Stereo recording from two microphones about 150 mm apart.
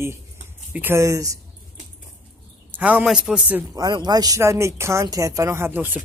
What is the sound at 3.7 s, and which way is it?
Speech, 25° right (ahead or behind).